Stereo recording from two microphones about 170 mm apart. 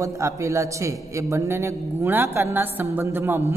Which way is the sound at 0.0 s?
20° right (ahead or behind).